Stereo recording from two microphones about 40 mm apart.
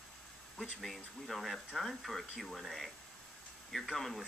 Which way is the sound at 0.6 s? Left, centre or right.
Centre.